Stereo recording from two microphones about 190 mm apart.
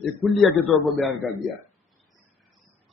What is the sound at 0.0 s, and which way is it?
A man's voice, centre (ahead or behind).